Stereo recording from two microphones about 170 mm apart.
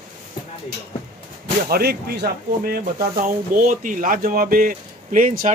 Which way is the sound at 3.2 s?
50° right (ahead or behind).